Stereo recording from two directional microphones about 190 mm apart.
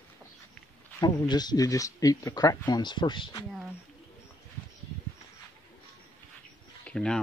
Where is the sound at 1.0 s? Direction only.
20° left (ahead or behind).